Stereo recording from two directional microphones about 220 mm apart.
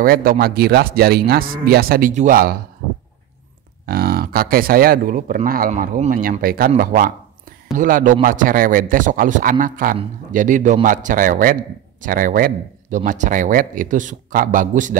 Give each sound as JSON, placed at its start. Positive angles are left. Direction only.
{"t": 0.0, "sound": "speech", "side_deg": -40}
{"t": 3.8, "sound": "speech", "side_deg": -40}